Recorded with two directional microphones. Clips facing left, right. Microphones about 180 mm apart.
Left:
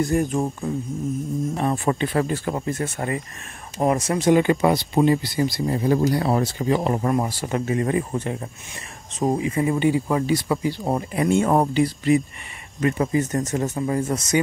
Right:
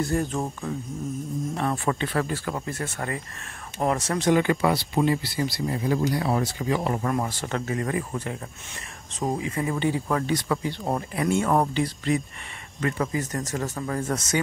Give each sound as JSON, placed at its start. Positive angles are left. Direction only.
{"t": 0.0, "sound": "speech", "side_deg": 15}
{"t": 5.7, "sound": "speech", "side_deg": 35}
{"t": 7.2, "sound": "speech", "side_deg": 10}
{"t": 12.8, "sound": "speech", "side_deg": 20}